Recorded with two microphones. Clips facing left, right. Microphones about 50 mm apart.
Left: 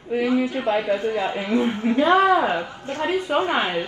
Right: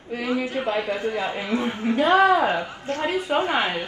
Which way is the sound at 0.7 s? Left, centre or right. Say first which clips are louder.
Left 3 dB; left.